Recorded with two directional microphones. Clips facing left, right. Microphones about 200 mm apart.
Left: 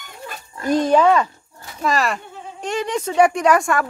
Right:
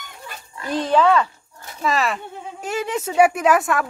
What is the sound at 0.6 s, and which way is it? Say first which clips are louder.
Speech: left 6 dB; 45° left (ahead or behind).